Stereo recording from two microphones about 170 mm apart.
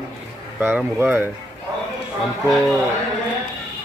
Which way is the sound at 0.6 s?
10° right (ahead or behind).